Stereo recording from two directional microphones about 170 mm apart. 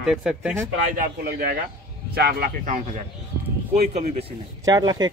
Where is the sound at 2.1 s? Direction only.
55° right (ahead or behind).